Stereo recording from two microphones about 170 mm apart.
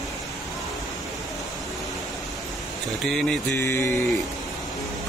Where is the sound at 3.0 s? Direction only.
5° left (ahead or behind).